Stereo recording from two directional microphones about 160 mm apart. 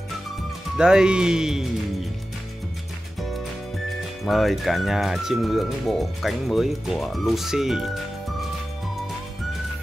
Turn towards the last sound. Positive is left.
turn(degrees=0)  # may be behind; listen again after turning